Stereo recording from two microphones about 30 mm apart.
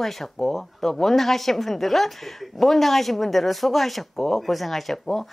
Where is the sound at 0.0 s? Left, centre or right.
Centre.